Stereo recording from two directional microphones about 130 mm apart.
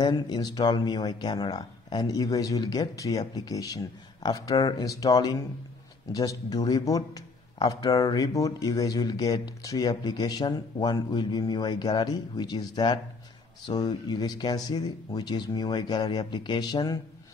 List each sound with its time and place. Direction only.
0.0 s a man's voice: 35° left (ahead or behind)